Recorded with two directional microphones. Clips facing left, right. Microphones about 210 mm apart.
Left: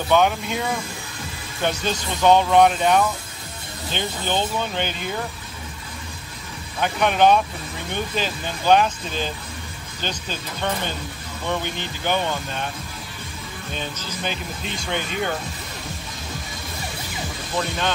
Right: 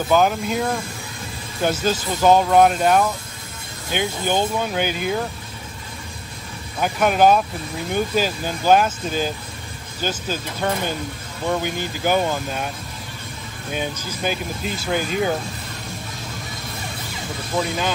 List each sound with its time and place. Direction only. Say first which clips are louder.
0.1 s speech: right 1 dB; centre (ahead or behind)
6.8 s speech: right 2 dB; 5° right (ahead or behind)
13.7 s speech: right 5 dB; 10° right (ahead or behind)